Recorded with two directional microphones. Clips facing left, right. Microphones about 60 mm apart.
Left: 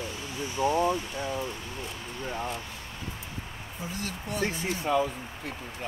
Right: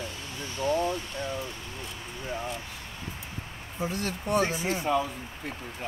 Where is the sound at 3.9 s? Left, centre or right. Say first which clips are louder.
Right 7 dB; right.